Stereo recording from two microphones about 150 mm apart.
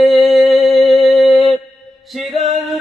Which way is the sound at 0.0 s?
Centre (ahead or behind).